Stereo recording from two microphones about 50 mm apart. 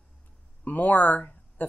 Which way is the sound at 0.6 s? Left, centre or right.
Left.